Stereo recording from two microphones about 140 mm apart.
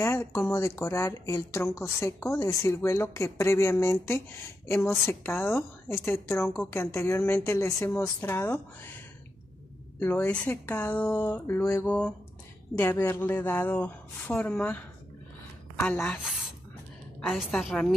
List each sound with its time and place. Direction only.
0.0 s a woman's voice: 20° left (ahead or behind)
16.3 s a sound: 5° right (ahead or behind)
17.3 s a woman's voice: centre (ahead or behind)